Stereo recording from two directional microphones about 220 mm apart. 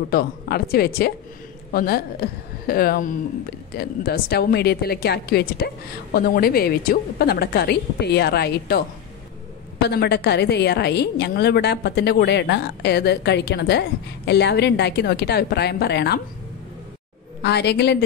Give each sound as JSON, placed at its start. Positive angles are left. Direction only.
{"t": 0.1, "sound": "a woman's voice", "side_deg": 45}
{"t": 17.4, "sound": "a woman's voice", "side_deg": 50}